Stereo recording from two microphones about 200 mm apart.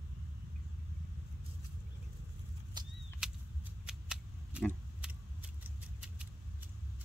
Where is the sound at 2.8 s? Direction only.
20° right (ahead or behind).